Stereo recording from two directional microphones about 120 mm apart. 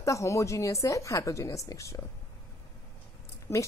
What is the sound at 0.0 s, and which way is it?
A woman's voice, 25° left (ahead or behind).